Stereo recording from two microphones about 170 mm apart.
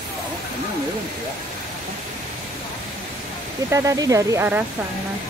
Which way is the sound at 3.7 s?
20° right (ahead or behind).